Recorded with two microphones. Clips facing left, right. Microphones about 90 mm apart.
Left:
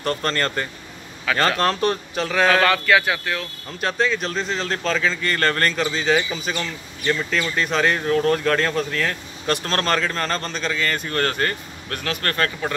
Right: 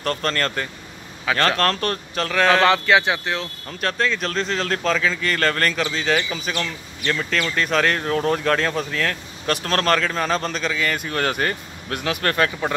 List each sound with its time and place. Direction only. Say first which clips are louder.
0.0 s speech: even; 5° left (ahead or behind)
1.3 s speech: even; 25° right (ahead or behind)
1.6 s speech: left 1 dB; 10° left (ahead or behind)
2.5 s speech: right 3 dB; 25° right (ahead or behind)
3.8 s speech: left 1 dB; 5° left (ahead or behind)